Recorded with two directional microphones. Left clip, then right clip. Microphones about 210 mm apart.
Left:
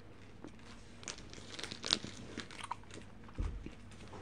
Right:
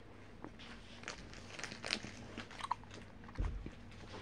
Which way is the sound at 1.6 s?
40° left (ahead or behind).